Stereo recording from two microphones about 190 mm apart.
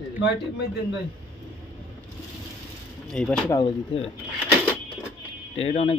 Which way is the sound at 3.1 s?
5° left (ahead or behind).